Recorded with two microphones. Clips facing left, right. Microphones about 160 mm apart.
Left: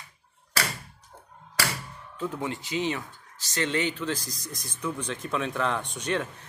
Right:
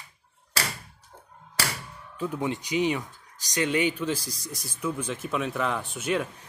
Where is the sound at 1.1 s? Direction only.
Centre (ahead or behind).